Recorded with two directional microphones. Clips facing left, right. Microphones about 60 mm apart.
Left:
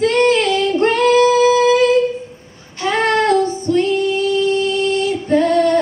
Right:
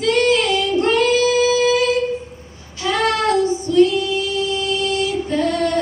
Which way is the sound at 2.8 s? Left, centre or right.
Left.